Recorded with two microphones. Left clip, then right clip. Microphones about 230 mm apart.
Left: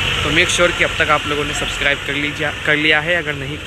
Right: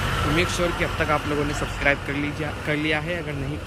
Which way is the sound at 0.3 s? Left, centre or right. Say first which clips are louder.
Left 10 dB; centre.